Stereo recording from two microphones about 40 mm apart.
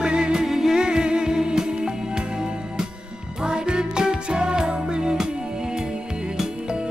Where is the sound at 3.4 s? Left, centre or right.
Right.